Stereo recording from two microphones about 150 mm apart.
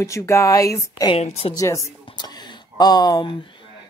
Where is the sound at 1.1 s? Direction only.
45° left (ahead or behind).